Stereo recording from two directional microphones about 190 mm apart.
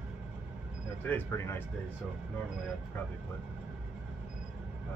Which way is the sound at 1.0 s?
10° left (ahead or behind).